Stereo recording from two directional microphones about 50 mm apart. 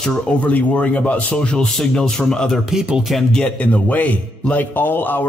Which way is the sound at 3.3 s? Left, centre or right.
Centre.